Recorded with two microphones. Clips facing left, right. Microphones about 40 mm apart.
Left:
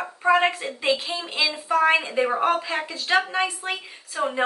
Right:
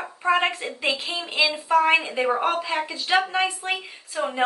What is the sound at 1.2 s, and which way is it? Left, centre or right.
Speech, centre.